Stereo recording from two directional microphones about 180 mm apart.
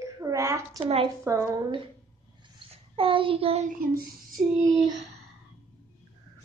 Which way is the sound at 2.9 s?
30° right (ahead or behind).